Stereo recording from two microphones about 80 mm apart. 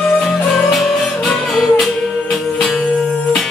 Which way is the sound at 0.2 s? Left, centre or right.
Centre.